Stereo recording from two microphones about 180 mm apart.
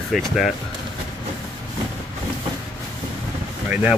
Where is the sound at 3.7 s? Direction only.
5° right (ahead or behind).